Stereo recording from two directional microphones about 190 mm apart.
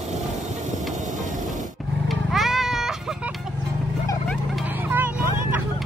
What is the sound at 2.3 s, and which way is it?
Music, centre (ahead or behind).